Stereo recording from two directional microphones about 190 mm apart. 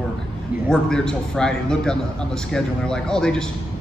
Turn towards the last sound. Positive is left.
turn(degrees=5)  # may be behind; listen again after turning